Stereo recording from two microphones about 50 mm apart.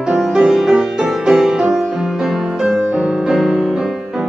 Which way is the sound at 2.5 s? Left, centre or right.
Centre.